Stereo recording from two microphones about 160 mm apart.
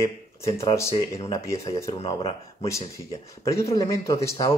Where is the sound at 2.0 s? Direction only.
35° left (ahead or behind).